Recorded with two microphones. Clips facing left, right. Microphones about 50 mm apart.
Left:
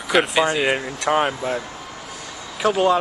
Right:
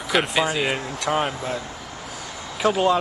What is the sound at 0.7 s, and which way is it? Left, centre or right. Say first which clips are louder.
Speech: left 4 dB; centre.